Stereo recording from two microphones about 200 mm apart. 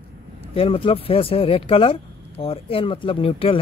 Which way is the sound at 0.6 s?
25° left (ahead or behind).